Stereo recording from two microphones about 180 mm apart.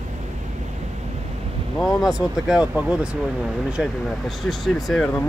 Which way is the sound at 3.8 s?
5° left (ahead or behind).